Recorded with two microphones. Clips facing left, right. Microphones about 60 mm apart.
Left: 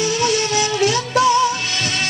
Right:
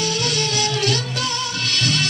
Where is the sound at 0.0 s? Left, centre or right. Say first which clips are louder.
Left 4 dB; left.